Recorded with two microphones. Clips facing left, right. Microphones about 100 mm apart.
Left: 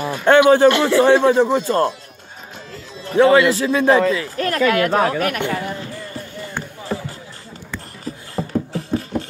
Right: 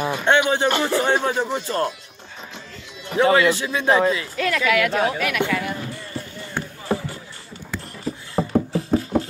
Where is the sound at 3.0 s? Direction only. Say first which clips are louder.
Left 4 dB; 35° left (ahead or behind).